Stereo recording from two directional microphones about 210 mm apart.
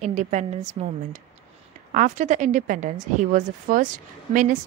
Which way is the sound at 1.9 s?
40° right (ahead or behind).